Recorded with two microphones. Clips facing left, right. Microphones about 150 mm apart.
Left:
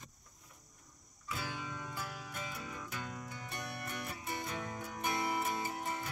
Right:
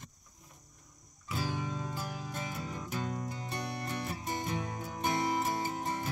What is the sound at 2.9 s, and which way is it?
Music, 35° right (ahead or behind).